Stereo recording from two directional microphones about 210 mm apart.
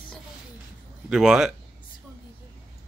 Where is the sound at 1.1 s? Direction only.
Centre (ahead or behind).